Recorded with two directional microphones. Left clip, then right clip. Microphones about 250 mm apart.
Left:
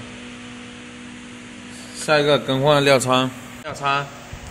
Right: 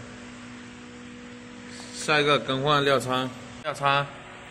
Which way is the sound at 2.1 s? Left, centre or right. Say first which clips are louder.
Left 5 dB; left.